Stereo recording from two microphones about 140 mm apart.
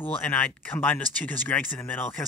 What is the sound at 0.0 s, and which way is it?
Speech, 10° left (ahead or behind).